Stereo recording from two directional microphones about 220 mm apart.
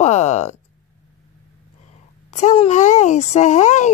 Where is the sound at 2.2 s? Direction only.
30° left (ahead or behind).